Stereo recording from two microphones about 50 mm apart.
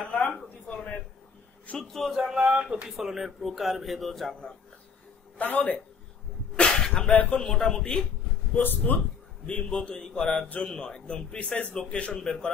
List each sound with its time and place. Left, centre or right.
0.1 s a sound: left
1.8 s a man's voice: centre
2.0 s a sound: centre
2.4 s speech: right
3.0 s a man's voice: centre
5.4 s a man's voice: left
6.5 s a sound: centre
7.1 s speech: left
7.3 s a man's voice: centre
8.5 s speech: left
9.5 s a man's voice: centre
12.1 s a man's voice: centre